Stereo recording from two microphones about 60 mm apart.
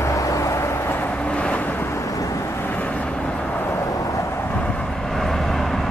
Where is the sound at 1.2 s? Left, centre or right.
Left.